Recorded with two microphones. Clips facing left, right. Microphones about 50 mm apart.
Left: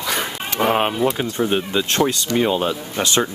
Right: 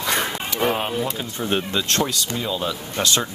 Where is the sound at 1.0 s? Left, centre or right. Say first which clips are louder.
Left 6 dB; left.